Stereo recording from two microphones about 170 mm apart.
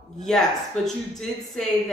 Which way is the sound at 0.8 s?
Centre (ahead or behind).